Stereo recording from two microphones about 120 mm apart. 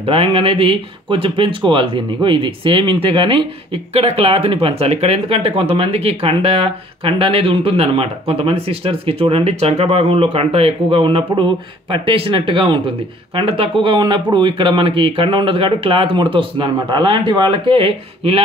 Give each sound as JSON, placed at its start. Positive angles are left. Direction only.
{"t": 0.0, "sound": "speech", "side_deg": -50}